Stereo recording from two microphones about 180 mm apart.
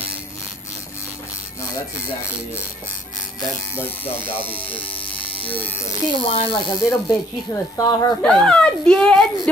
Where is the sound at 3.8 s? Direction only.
10° left (ahead or behind).